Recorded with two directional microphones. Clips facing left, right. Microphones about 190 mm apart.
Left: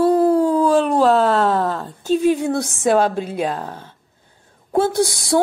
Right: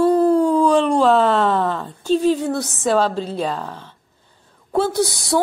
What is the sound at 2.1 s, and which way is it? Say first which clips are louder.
Speech: left 1 dB; 15° left (ahead or behind).